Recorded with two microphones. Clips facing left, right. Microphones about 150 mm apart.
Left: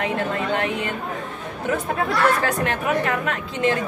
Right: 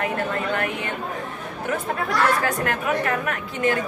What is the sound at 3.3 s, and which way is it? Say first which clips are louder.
Speech: left 1 dB; 25° left (ahead or behind).